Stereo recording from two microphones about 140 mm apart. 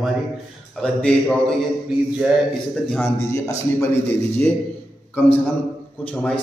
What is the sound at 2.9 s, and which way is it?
Speech, 15° left (ahead or behind).